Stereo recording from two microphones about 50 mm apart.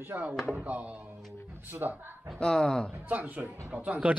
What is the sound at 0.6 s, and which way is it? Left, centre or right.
Speech, right.